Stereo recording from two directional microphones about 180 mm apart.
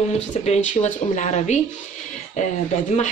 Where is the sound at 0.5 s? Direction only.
45° left (ahead or behind).